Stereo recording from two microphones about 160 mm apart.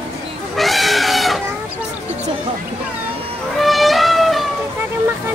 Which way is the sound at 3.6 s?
Centre (ahead or behind).